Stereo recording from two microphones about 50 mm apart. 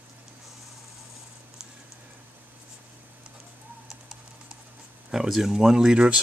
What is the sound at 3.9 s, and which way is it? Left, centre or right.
Typing, centre.